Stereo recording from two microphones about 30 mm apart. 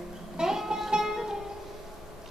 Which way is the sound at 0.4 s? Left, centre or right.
Centre.